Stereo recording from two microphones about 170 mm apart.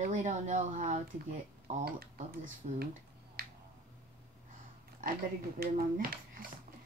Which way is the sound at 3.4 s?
65° right (ahead or behind).